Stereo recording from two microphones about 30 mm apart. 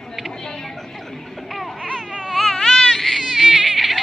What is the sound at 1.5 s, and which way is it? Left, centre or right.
Baby cry, centre.